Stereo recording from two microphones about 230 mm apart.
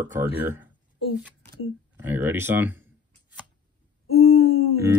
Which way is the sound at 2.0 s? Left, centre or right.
Centre.